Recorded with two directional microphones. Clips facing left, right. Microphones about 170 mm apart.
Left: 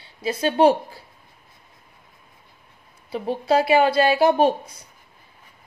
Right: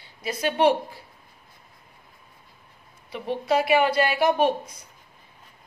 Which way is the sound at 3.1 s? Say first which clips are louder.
Left 3 dB; 35° left (ahead or behind).